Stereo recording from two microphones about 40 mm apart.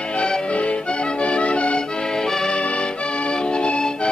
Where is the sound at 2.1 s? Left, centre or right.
Centre.